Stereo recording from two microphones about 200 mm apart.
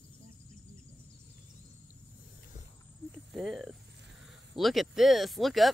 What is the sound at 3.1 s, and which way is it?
Cricket, centre (ahead or behind).